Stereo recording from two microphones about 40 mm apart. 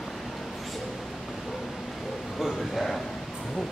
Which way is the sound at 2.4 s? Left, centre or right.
Centre.